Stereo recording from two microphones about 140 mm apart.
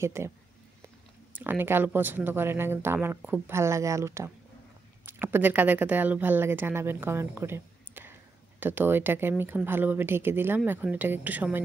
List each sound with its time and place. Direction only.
0.0 s speech: 20° right (ahead or behind)
1.4 s speech: 15° right (ahead or behind)